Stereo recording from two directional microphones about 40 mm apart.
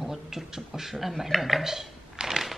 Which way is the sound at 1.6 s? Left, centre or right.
Centre.